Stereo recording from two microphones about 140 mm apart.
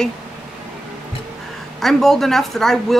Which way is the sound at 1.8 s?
Centre (ahead or behind).